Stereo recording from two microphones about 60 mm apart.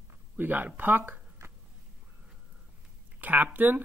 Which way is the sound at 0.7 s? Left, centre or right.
Right.